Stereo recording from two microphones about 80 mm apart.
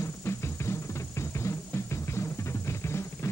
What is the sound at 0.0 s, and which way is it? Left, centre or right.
Music, left.